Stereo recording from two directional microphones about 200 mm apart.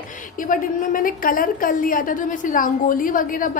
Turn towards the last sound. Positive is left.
turn(degrees=45)  # may be behind; listen again after turning